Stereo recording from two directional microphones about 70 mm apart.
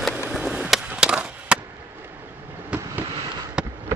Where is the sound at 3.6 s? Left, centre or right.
Centre.